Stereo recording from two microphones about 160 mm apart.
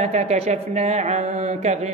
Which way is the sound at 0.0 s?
40° right (ahead or behind).